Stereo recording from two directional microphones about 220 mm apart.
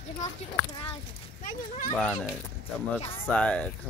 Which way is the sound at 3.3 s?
5° left (ahead or behind).